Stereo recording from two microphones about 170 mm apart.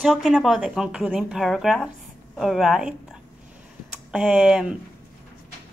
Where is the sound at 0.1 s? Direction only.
Centre (ahead or behind).